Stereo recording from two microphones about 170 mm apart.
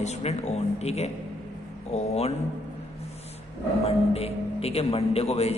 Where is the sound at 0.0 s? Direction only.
40° left (ahead or behind).